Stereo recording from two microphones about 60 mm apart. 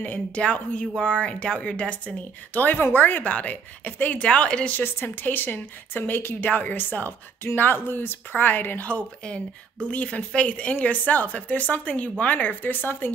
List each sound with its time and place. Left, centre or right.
0.0 s speech: left
4.2 s speech: centre
4.7 s speech: left